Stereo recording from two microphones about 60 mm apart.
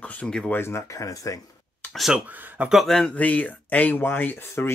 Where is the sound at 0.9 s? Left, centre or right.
Left.